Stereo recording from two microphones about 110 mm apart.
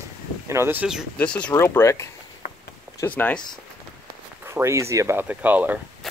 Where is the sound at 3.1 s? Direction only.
15° left (ahead or behind).